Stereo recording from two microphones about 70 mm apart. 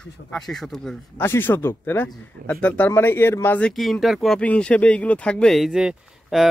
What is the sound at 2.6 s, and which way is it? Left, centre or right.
Speech, centre.